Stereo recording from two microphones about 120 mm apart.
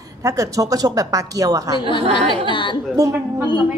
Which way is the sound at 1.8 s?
45° left (ahead or behind).